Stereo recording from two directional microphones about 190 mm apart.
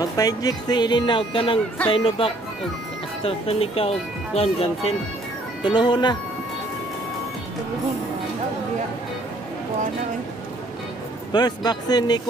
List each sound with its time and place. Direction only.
0.0 s speech: 20° left (ahead or behind)
11.3 s speech: 20° left (ahead or behind)